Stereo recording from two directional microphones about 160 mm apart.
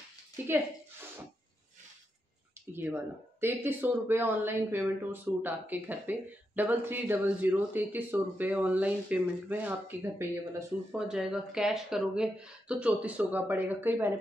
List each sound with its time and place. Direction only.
2.7 s speech: 15° right (ahead or behind)